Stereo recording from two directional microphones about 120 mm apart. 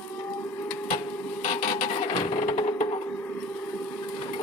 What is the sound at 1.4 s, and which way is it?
Vehicle, 85° left.